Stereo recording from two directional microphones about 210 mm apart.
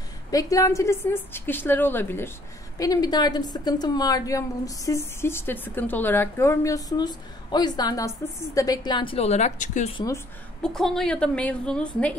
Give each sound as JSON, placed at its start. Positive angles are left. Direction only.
{"t": 0.3, "sound": "a woman's voice", "side_deg": 15}
{"t": 9.9, "sound": "a woman's voice", "side_deg": 15}
{"t": 10.6, "sound": "a woman's voice", "side_deg": 0}